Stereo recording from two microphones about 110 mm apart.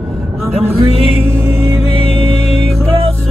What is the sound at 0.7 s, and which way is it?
Music, 60° right (ahead or behind).